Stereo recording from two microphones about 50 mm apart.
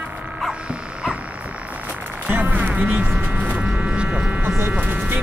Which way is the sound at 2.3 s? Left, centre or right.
Right.